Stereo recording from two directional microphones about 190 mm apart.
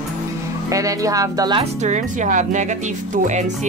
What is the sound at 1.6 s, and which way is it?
Speech, 40° right (ahead or behind).